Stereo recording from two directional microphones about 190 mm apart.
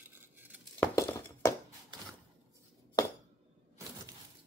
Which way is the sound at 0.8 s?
15° left (ahead or behind).